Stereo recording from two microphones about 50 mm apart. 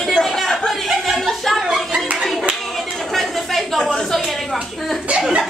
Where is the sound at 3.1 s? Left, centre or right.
Centre.